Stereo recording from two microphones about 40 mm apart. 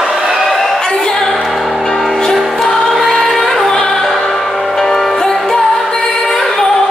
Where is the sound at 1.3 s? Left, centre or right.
Centre.